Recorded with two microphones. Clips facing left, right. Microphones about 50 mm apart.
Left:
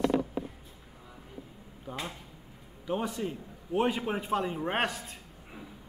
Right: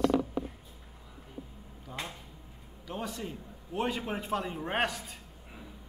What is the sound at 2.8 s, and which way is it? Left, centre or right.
A man's voice, centre.